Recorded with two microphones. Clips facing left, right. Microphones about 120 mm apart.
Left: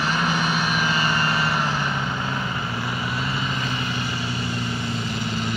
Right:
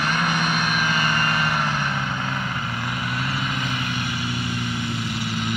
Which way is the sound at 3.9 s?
60° right (ahead or behind).